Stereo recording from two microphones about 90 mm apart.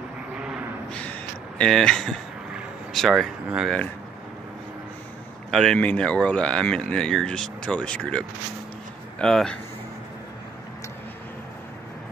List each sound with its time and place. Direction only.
0.4 s a sound: 10° right (ahead or behind)
1.6 s speech: 5° left (ahead or behind)
5.5 s speech: 5° left (ahead or behind)